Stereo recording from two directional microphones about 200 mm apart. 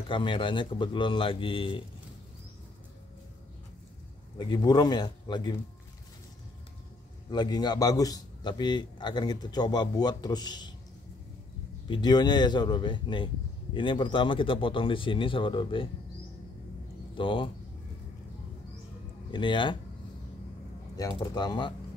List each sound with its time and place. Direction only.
0.1 s a man's voice: 25° left (ahead or behind)
4.4 s a man's voice: 20° left (ahead or behind)
7.2 s a man's voice: 20° left (ahead or behind)
11.9 s a man's voice: 20° left (ahead or behind)
17.2 s a man's voice: 25° left (ahead or behind)
19.3 s a man's voice: 25° left (ahead or behind)
20.9 s a man's voice: 20° left (ahead or behind)